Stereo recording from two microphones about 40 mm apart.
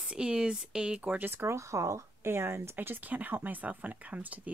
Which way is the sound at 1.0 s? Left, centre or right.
Right.